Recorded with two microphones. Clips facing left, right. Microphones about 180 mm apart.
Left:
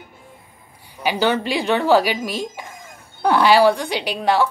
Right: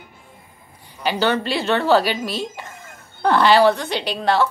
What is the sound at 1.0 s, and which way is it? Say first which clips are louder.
A woman's voice: left 1 dB; 10° left (ahead or behind).